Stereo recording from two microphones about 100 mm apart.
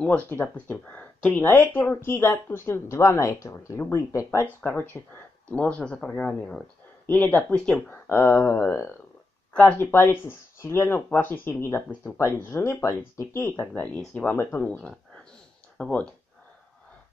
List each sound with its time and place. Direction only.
0.0 s speech: 15° left (ahead or behind)
4.6 s speech: 20° left (ahead or behind)
8.1 s speech: 25° left (ahead or behind)
9.5 s speech: 15° left (ahead or behind)